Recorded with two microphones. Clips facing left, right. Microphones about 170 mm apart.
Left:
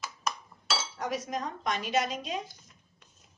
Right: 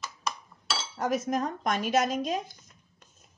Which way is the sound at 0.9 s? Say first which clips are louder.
Right 9 dB; 45° right (ahead or behind).